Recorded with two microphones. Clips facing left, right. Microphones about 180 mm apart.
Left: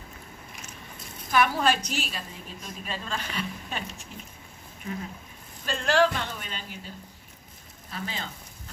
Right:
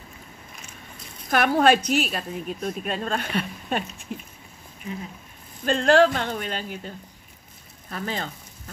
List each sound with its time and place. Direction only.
1.3 s a woman's voice: 60° right (ahead or behind)
5.7 s speech: 50° right (ahead or behind)
7.9 s speech: 50° right (ahead or behind)